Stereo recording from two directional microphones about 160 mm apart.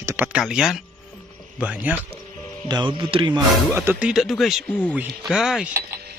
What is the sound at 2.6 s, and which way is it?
Speech, 25° right (ahead or behind).